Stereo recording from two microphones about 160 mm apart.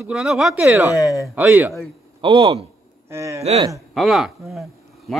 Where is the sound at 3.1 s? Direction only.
20° right (ahead or behind).